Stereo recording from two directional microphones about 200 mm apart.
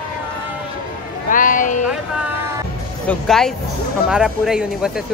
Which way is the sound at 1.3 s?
40° left (ahead or behind).